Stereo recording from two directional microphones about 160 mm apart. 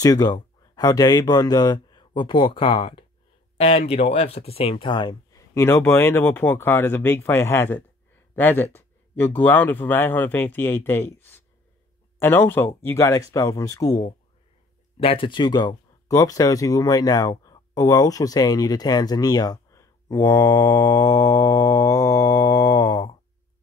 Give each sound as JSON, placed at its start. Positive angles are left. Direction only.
{"t": 0.0, "sound": "speech", "side_deg": 25}
{"t": 5.5, "sound": "speech", "side_deg": 15}
{"t": 15.0, "sound": "speech", "side_deg": 35}